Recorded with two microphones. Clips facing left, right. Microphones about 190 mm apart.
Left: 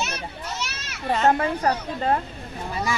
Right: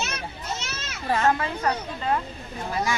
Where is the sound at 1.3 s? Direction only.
40° left (ahead or behind).